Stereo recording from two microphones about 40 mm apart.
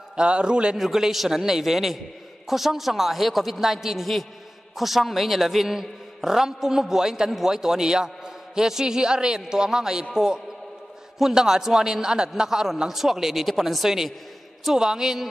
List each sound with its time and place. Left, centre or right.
0.1 s a man's voice: right
0.7 s a man's voice: centre